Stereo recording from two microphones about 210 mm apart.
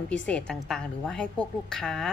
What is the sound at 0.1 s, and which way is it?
A woman's voice, 5° left (ahead or behind).